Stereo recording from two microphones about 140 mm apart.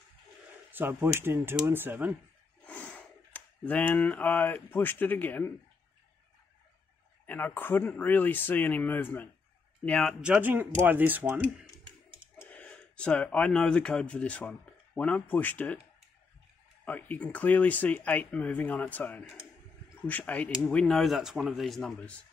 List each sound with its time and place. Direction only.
0.7 s speech: 15° right (ahead or behind)
2.6 s speech: 10° left (ahead or behind)
7.2 s speech: 15° left (ahead or behind)
10.2 s speech: 10° right (ahead or behind)
12.4 s speech: 10° left (ahead or behind)
16.8 s speech: 10° left (ahead or behind)